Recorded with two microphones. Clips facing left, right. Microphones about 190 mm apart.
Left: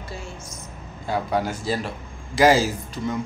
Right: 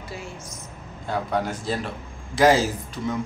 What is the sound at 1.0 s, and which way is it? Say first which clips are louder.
A man's voice: left 1 dB; 5° left (ahead or behind).